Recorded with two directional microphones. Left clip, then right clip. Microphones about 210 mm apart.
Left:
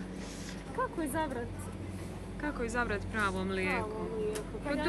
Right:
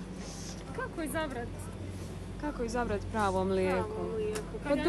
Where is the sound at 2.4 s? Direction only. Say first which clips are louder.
Even; 10° right (ahead or behind).